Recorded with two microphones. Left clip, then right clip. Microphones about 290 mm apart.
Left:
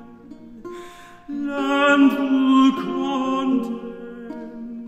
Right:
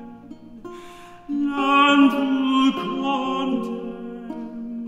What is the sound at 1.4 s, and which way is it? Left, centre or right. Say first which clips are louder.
Music: right 3 dB; left.